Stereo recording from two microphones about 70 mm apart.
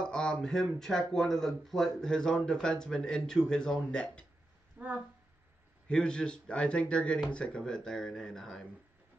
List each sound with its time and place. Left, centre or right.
0.0 s speech: centre
4.7 s speech: centre
5.9 s speech: centre